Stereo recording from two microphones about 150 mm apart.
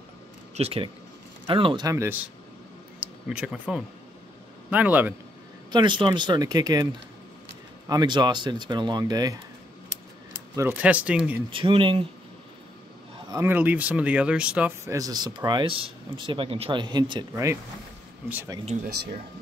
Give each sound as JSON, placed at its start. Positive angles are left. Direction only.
{"t": 0.6, "sound": "speech", "side_deg": -40}
{"t": 2.0, "sound": "speech", "side_deg": -15}
{"t": 5.7, "sound": "speech", "side_deg": -30}
{"t": 7.9, "sound": "speech", "side_deg": -30}
{"t": 10.7, "sound": "speech", "side_deg": -10}
{"t": 11.5, "sound": "speech", "side_deg": -35}
{"t": 13.3, "sound": "speech", "side_deg": -15}
{"t": 14.9, "sound": "speech", "side_deg": -25}
{"t": 18.7, "sound": "speech", "side_deg": -50}